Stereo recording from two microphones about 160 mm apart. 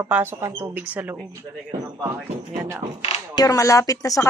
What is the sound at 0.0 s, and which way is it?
Speech, 15° right (ahead or behind).